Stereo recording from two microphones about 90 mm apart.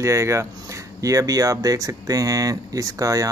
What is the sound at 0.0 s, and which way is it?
Speech, 35° right (ahead or behind).